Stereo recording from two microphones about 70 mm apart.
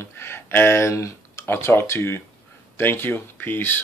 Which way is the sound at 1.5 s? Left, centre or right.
Left.